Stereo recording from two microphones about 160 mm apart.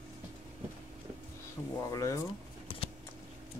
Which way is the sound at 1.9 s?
20° left (ahead or behind).